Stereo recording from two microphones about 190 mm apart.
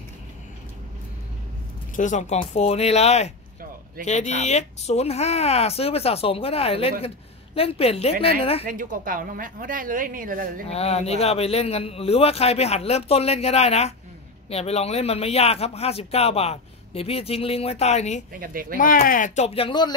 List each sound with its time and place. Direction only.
2.0 s speech: 40° left (ahead or behind)
8.6 s a woman's voice: 45° right (ahead or behind)
10.7 s speech: 35° left (ahead or behind)
18.3 s a woman's voice: 50° right (ahead or behind)
18.8 s speech: 45° left (ahead or behind); by 19.9 s 25° left (ahead or behind)